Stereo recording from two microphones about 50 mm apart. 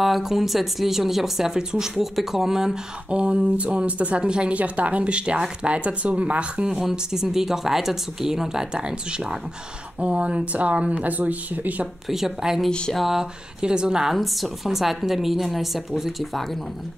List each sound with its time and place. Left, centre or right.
0.0 s speech: centre
3.1 s speech: right
6.8 s speech: centre; by 11.9 s right
12.1 s speech: centre
14.1 s speech: centre